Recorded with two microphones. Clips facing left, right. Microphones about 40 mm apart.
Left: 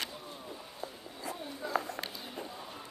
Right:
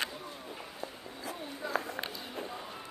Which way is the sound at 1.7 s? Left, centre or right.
Centre.